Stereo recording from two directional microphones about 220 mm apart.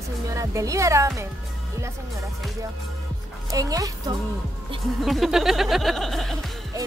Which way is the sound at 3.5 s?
15° right (ahead or behind).